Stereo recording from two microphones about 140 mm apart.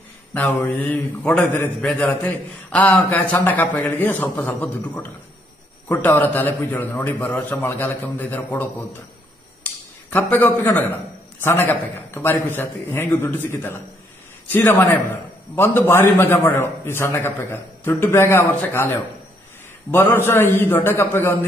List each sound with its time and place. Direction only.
0.3 s a man's voice: 10° left (ahead or behind)
9.6 s a sound: 10° left (ahead or behind)
11.4 s a man's voice: 15° left (ahead or behind)
19.9 s a man's voice: 15° left (ahead or behind)